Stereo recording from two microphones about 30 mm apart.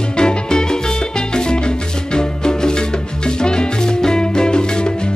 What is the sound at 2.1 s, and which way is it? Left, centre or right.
Music, left.